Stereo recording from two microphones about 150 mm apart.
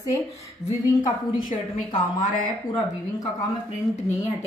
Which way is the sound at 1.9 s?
35° left (ahead or behind).